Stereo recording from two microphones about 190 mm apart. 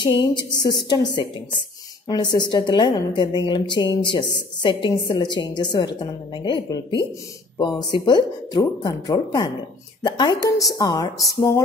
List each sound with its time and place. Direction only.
0.0 s a woman's voice: 25° left (ahead or behind)